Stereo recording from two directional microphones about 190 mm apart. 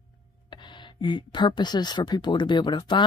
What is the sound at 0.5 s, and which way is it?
Speech, 25° left (ahead or behind).